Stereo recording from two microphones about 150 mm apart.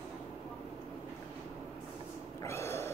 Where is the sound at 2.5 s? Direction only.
15° left (ahead or behind).